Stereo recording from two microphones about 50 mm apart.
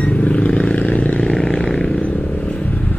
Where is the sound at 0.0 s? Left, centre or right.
Left.